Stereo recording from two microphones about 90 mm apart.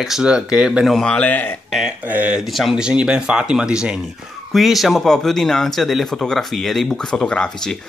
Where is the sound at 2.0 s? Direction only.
15° right (ahead or behind).